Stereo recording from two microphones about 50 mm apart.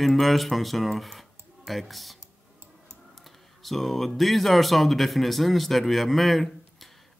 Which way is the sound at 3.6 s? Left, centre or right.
Centre.